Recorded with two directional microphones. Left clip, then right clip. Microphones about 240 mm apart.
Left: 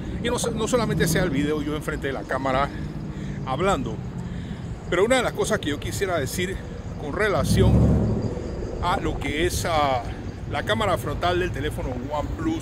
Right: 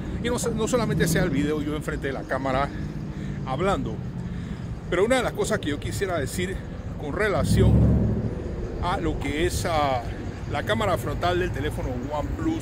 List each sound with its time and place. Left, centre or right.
0.2 s speech: centre
4.9 s speech: centre
8.8 s speech: centre